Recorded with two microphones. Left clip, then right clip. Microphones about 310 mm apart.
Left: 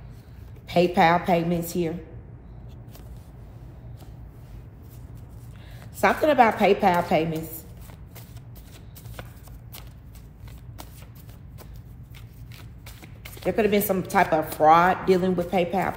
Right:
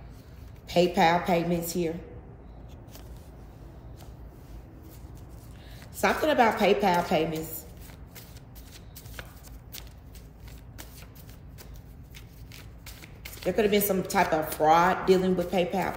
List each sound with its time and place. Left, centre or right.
0.7 s speech: left
5.9 s speech: centre
13.0 s speech: centre